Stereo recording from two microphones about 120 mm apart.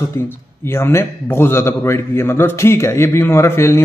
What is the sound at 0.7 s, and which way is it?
A man's voice, 20° left (ahead or behind).